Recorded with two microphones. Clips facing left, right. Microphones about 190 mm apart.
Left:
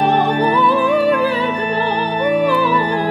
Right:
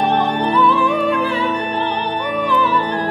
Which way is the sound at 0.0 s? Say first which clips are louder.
Left 2 dB; 10° left (ahead or behind).